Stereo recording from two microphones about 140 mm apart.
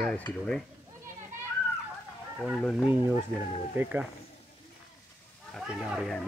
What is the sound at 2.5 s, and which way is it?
Speech, 5° left (ahead or behind).